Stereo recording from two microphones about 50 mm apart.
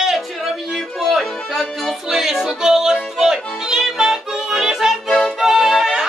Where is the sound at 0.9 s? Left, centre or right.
Centre.